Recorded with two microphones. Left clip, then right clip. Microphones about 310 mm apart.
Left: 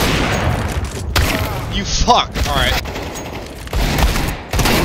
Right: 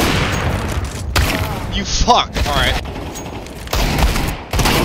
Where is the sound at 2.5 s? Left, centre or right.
Centre.